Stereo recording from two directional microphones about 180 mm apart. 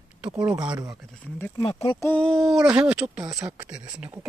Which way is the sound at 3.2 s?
20° right (ahead or behind).